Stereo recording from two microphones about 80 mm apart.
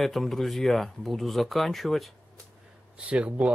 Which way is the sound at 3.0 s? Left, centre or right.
Centre.